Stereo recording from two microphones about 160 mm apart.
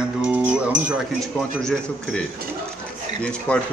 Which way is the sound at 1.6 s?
5° left (ahead or behind).